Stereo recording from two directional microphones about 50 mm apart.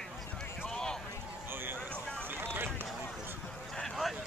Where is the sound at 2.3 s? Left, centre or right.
Right.